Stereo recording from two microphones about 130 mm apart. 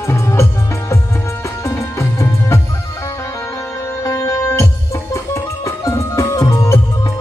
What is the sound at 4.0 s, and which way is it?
Music, 25° left (ahead or behind).